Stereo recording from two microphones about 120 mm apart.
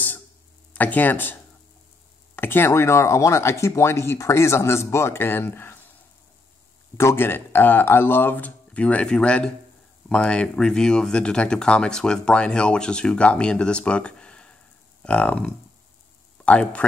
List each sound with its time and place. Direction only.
0.7 s speech: 15° left (ahead or behind)
2.3 s speech: 20° left (ahead or behind)
7.0 s speech: 20° left (ahead or behind)